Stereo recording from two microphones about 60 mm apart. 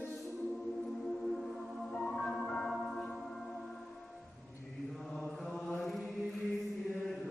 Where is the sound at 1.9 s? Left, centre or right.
Centre.